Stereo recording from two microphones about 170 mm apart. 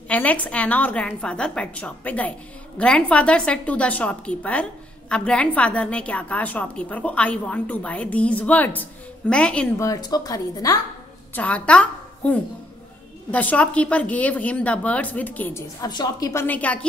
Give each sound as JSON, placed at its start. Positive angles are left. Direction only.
{"t": 0.1, "sound": "a woman's voice", "side_deg": 10}
{"t": 9.8, "sound": "speech", "side_deg": 20}
{"t": 11.3, "sound": "a woman's voice", "side_deg": 5}
{"t": 15.9, "sound": "a woman's voice", "side_deg": 25}